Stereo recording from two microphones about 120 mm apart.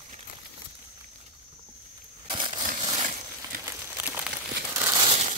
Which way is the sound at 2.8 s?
40° right (ahead or behind).